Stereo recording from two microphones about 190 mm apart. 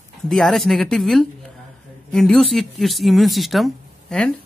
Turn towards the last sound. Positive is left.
turn(degrees=5)  # may be behind; listen again after turning